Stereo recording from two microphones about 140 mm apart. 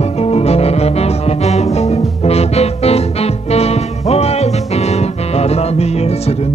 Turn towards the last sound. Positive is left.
turn(degrees=50)  # may be behind; listen again after turning